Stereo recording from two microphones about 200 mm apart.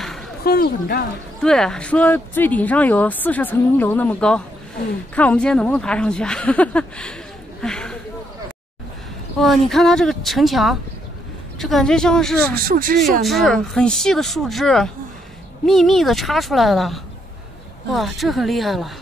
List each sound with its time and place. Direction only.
0.4 s speech: 50° left (ahead or behind)
1.4 s speech: 5° left (ahead or behind)
7.6 s a sound: 5° left (ahead or behind)
9.4 s speech: centre (ahead or behind)
12.6 s speech: 45° right (ahead or behind)
13.2 s speech: centre (ahead or behind)